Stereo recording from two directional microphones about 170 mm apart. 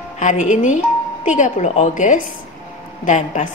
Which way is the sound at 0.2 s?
45° left (ahead or behind).